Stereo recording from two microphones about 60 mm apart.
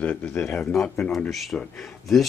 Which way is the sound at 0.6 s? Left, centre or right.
Centre.